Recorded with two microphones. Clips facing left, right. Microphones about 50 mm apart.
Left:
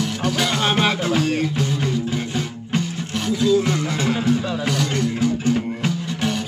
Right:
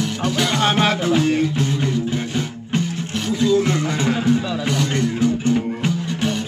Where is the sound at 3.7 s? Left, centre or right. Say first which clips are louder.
Right 1 dB; centre.